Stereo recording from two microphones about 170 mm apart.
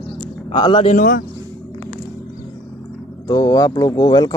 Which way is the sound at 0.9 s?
50° left (ahead or behind).